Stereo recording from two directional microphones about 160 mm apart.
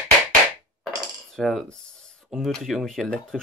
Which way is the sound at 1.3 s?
Centre (ahead or behind).